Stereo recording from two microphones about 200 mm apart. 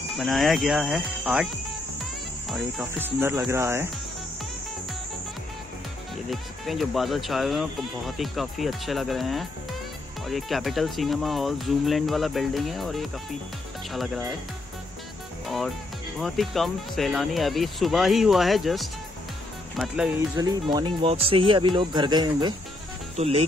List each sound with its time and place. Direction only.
0.2 s speech: centre (ahead or behind)
2.5 s speech: 5° right (ahead or behind)
6.3 s speech: centre (ahead or behind)
15.4 s music: centre (ahead or behind)
16.2 s speech: centre (ahead or behind)
20.2 s speech: 20° right (ahead or behind)